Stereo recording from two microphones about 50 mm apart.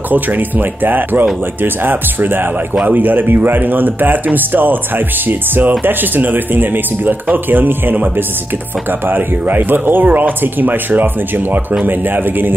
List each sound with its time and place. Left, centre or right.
0.1 s speech: right